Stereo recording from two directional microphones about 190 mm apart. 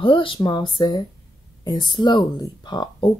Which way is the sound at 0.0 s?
25° left (ahead or behind).